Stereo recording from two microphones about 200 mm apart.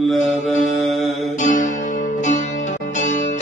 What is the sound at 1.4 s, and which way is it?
Music, 40° left (ahead or behind).